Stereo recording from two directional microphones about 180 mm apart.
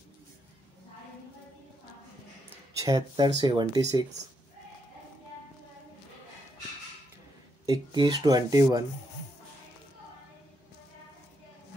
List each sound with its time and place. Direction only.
2.8 s speech: 20° right (ahead or behind)
7.6 s speech: 20° right (ahead or behind)